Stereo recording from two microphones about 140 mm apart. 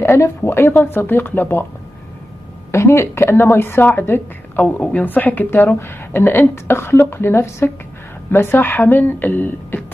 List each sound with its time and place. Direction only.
0.0 s a woman's voice: 15° left (ahead or behind)
2.7 s a woman's voice: 20° left (ahead or behind)